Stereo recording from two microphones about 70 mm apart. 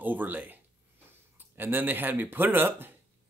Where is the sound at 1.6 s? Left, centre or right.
Right.